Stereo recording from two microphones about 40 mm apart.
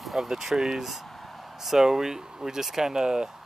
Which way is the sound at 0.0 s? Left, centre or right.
Centre.